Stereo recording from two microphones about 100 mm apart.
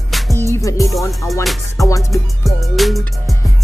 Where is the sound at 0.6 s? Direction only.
30° left (ahead or behind).